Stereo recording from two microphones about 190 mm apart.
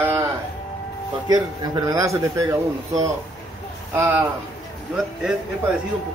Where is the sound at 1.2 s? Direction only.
20° right (ahead or behind).